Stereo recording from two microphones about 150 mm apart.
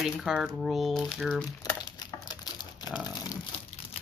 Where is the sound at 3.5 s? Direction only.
40° left (ahead or behind).